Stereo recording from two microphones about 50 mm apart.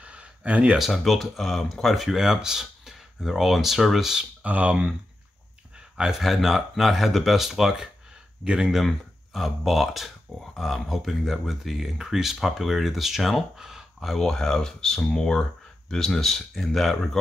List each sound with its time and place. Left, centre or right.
0.0 s a sound: right
0.7 s speech: centre
4.2 s speech: right
5.9 s speech: centre
8.7 s speech: centre
13.9 s speech: centre